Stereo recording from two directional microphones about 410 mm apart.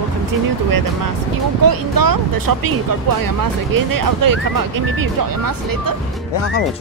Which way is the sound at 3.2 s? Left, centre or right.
Right.